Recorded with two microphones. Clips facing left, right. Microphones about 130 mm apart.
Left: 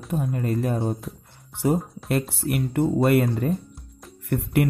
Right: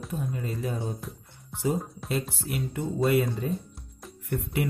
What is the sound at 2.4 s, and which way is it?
Speech, 65° left (ahead or behind).